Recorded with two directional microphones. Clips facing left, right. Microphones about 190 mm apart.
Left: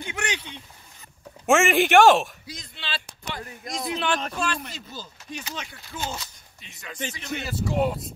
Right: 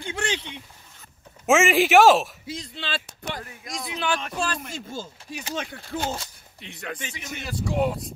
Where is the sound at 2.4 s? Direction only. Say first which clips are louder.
Right 7 dB; 30° right (ahead or behind).